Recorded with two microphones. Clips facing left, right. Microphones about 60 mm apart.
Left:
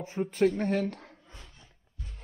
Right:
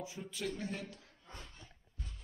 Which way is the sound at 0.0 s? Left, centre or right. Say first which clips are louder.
Left 15 dB; left.